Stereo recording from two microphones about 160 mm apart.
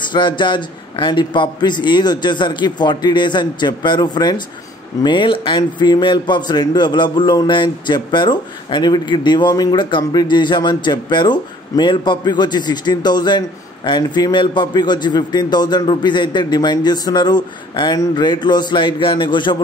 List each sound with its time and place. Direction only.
0.1 s a man's voice: 30° left (ahead or behind)